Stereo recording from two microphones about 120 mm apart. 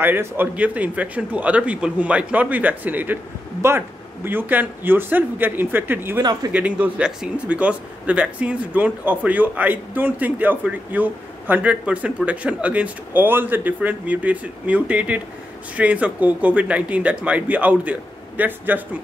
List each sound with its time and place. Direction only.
0.0 s a man's voice: 15° right (ahead or behind)